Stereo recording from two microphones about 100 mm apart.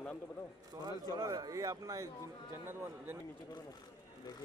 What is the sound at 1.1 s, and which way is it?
Speech, 40° right (ahead or behind).